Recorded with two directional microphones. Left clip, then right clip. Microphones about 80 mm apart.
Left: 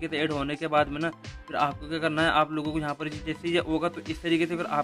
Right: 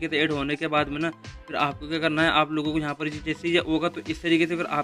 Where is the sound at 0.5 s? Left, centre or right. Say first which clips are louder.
Even; right.